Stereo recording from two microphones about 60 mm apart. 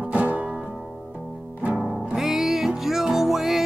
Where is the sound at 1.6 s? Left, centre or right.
Right.